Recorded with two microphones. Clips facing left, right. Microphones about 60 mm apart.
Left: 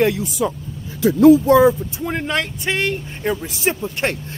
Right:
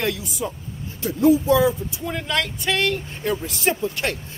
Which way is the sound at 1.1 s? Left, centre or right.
Left.